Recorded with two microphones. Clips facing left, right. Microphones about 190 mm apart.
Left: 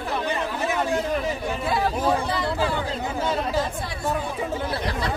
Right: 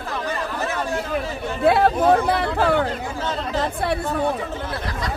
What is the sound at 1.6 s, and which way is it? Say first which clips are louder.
Speech: right 8 dB; 60° right (ahead or behind).